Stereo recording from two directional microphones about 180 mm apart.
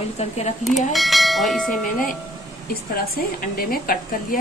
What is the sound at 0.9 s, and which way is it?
Church bell, centre (ahead or behind).